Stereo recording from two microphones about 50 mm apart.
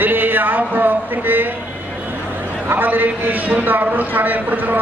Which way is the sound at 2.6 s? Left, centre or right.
Right.